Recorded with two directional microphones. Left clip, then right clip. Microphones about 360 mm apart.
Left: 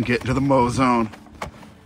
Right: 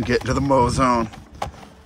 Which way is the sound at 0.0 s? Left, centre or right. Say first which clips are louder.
Right 1 dB; centre.